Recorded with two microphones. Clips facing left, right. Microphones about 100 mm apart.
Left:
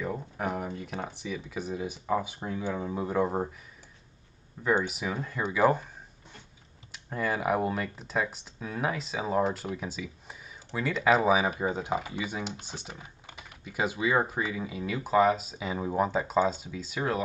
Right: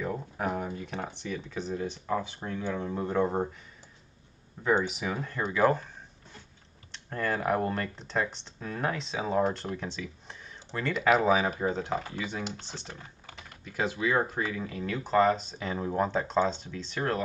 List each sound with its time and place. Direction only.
0.0 s speech: centre (ahead or behind)
4.6 s speech: centre (ahead or behind)
6.9 s speech: 5° left (ahead or behind)
10.9 s speech: 5° right (ahead or behind)
11.2 s speech: 10° left (ahead or behind)